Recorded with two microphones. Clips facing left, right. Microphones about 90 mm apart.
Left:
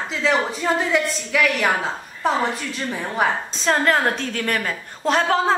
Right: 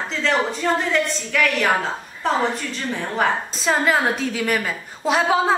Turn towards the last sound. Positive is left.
turn(degrees=-5)  # may be behind; listen again after turning